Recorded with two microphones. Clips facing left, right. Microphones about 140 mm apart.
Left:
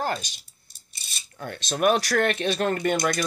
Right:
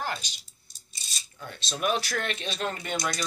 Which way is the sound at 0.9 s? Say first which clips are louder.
Left 5 dB; 60° left (ahead or behind).